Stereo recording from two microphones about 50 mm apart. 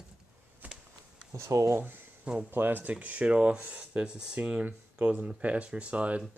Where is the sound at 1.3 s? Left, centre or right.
Right.